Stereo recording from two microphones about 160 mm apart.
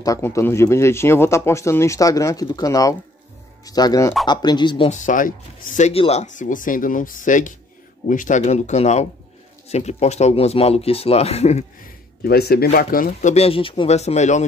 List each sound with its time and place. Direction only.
0.0 s speech: 20° left (ahead or behind)
4.8 s speech: 50° left (ahead or behind)
5.8 s speech: 40° left (ahead or behind)
12.2 s speech: 75° left (ahead or behind)
12.7 s speech: 60° left (ahead or behind)